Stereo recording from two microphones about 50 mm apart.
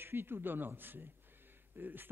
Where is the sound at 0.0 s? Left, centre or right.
Right.